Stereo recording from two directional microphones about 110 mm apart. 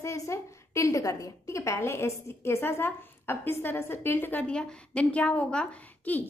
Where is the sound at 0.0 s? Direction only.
25° left (ahead or behind).